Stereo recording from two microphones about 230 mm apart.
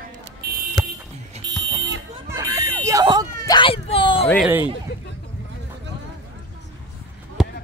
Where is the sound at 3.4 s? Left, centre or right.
Centre.